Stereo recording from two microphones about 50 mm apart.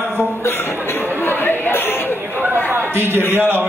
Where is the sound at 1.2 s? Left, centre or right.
Left.